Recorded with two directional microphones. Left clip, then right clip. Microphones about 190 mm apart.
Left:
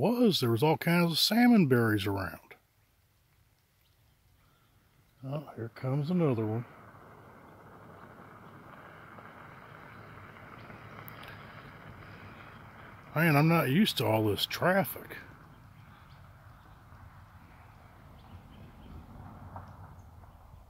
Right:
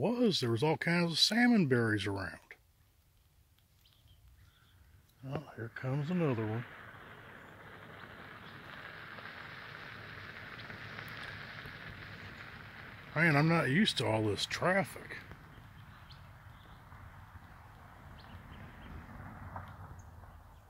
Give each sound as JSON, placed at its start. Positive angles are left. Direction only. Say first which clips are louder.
{"t": 0.0, "sound": "speech", "louder": "left 4 dB", "side_deg": 40}
{"t": 5.2, "sound": "speech", "louder": "left 3 dB", "side_deg": 45}
{"t": 5.8, "sound": "a sound", "louder": "left 4 dB", "side_deg": 45}
{"t": 13.1, "sound": "speech", "louder": "left 3 dB", "side_deg": 35}